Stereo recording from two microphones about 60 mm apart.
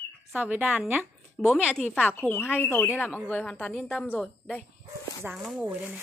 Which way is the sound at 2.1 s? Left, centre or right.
Left.